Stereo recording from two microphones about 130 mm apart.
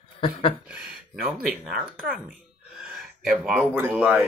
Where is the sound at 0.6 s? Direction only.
5° right (ahead or behind).